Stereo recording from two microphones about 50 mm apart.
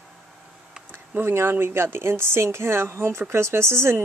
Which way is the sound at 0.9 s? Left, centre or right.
Right.